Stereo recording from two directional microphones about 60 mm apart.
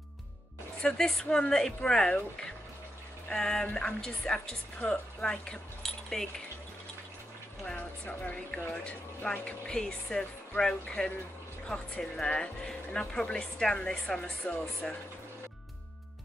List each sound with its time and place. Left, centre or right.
0.8 s speech: centre
3.3 s speech: centre
7.6 s a woman's voice: centre
9.7 s a woman's voice: centre